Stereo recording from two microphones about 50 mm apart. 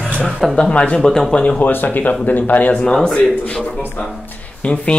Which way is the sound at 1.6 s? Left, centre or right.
Left.